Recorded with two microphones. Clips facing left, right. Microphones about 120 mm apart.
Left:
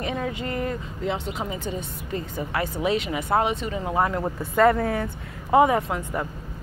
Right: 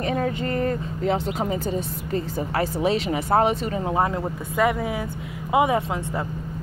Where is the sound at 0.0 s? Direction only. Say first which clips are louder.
Right 4 dB; 40° right (ahead or behind).